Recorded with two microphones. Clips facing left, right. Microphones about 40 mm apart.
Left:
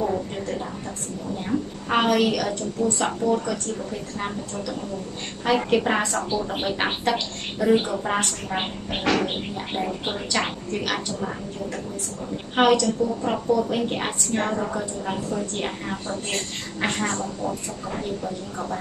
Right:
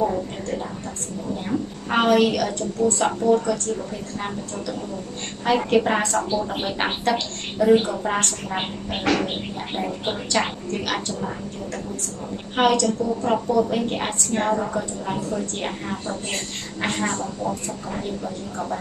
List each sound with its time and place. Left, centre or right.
0.0 s a sound: centre
2.0 s a woman's voice: centre
5.4 s a woman's voice: centre
12.5 s a woman's voice: centre